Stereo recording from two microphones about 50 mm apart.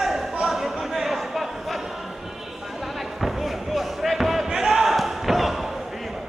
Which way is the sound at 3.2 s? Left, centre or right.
Centre.